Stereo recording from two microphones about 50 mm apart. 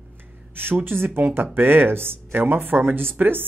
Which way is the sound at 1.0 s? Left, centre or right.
Right.